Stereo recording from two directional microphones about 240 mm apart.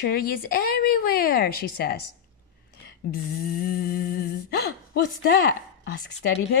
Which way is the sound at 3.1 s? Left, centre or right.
Left.